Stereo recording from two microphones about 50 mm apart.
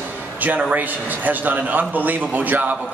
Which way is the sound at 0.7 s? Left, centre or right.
Right.